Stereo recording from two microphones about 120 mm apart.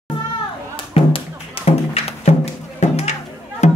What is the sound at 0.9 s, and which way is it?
Music, 50° left (ahead or behind).